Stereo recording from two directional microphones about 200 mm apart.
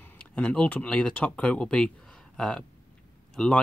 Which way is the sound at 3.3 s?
5° left (ahead or behind).